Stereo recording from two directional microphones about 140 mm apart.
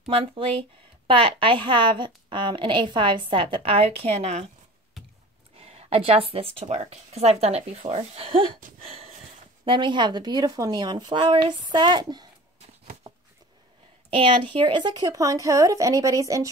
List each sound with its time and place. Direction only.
0.0 s a woman's voice: 40° right (ahead or behind)
5.6 s speech: 45° right (ahead or behind)
8.8 s a sound: 45° right (ahead or behind)
9.7 s a woman's voice: 35° right (ahead or behind)
13.0 s a sound: 35° right (ahead or behind)
14.1 s a woman's voice: 40° right (ahead or behind); by 16.4 s 25° right (ahead or behind)